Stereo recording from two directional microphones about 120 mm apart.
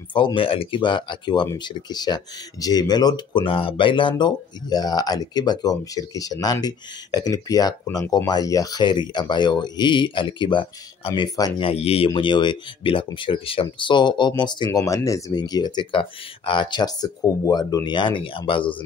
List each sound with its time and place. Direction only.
0.1 s speech: 45° left (ahead or behind)
3.4 s speech: 50° left (ahead or behind)
4.2 s speech: 35° left (ahead or behind)
11.6 s speech: 55° left (ahead or behind)
12.1 s speech: 40° left (ahead or behind)